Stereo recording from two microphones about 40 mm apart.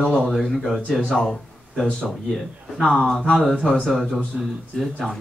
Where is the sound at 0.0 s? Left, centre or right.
Left.